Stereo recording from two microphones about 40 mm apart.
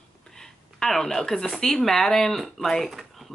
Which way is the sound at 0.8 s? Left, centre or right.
Centre.